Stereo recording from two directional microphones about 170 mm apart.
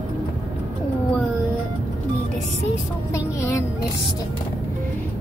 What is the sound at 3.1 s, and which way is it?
Music, 15° left (ahead or behind).